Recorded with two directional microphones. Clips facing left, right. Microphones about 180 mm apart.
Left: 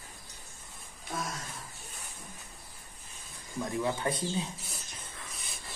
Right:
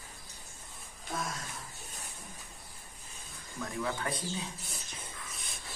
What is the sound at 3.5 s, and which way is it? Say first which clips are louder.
Speech: left 4 dB; 20° left (ahead or behind).